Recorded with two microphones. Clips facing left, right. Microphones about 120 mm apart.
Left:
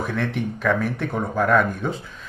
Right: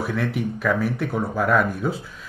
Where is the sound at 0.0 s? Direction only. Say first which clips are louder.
Even; 5° right (ahead or behind).